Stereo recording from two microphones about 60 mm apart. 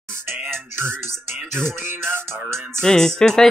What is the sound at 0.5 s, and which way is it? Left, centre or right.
Speech, right.